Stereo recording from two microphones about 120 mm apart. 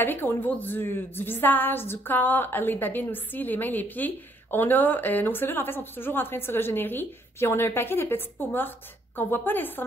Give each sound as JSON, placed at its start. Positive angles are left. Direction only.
{"t": 0.0, "sound": "a woman's voice", "side_deg": 15}